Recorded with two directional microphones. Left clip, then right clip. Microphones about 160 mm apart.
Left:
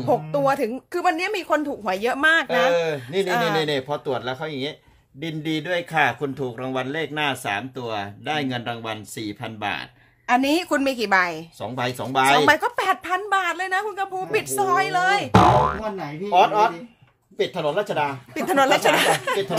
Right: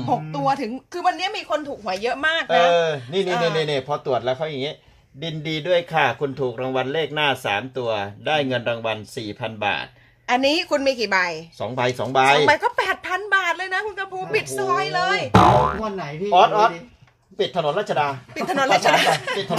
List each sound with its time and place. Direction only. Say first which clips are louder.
0.1 s a woman's voice: left 1 dB; 55° left (ahead or behind)
3.5 s speech: right 1 dB; 10° right (ahead or behind); by 4.7 s 25° right (ahead or behind)
5.2 s speech: even; 5° right (ahead or behind)
10.2 s a woman's voice: right 1 dB; 20° left (ahead or behind)
11.6 s speech: right 4 dB; 25° right (ahead or behind)
12.4 s a woman's voice: even; 25° left (ahead or behind)
15.3 s speech: right 2 dB; centre (ahead or behind)
17.4 s speech: right 1 dB; 15° right (ahead or behind)
18.3 s speech: left 1 dB; 40° left (ahead or behind)